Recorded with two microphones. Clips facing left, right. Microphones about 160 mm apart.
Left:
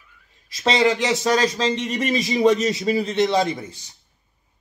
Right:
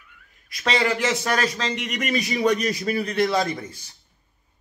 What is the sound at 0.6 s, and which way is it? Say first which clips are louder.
A man's voice: left 4 dB; 25° left (ahead or behind).